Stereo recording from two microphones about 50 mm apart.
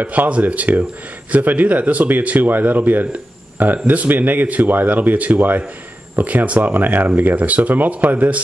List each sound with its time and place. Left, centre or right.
0.0 s speech: right